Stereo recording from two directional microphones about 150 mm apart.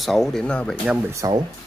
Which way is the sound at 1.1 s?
20° right (ahead or behind).